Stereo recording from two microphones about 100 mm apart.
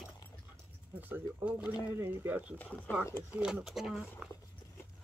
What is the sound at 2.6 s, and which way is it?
Speech, 20° left (ahead or behind).